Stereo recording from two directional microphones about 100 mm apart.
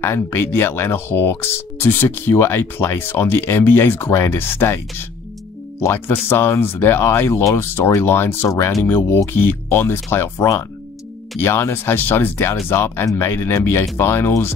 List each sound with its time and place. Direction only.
0.0 s speech: 25° left (ahead or behind)